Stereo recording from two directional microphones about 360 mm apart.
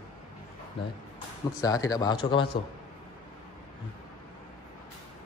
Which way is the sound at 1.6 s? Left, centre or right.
Centre.